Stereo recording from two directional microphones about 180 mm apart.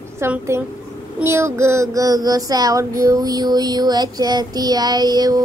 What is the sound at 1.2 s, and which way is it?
Child singing, 15° right (ahead or behind).